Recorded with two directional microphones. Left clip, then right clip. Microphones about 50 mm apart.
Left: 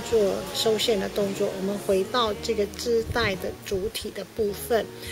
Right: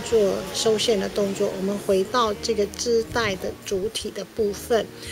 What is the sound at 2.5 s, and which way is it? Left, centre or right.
A woman's voice, centre.